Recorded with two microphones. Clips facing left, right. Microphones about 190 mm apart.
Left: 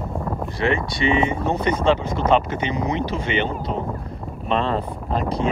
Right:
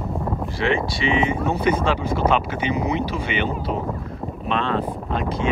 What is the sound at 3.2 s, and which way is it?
Speech, 10° right (ahead or behind).